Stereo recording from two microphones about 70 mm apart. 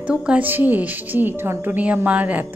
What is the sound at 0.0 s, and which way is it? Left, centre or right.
A woman's voice, centre.